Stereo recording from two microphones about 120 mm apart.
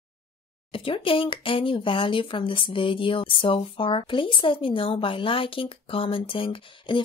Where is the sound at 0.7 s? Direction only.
50° left (ahead or behind).